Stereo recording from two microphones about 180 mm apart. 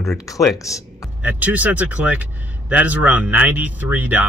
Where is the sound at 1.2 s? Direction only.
10° right (ahead or behind).